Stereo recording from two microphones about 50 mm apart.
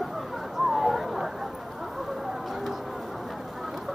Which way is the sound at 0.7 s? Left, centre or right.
Centre.